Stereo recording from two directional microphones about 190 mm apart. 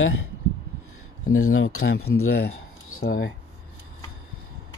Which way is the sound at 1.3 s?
90° left.